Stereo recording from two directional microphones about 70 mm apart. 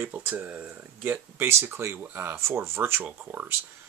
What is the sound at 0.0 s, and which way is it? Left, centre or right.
Speech, right.